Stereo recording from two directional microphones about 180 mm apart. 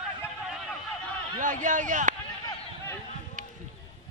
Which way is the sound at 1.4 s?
45° right (ahead or behind).